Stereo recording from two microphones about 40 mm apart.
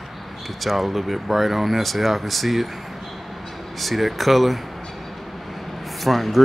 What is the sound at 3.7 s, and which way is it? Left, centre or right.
Speech, centre.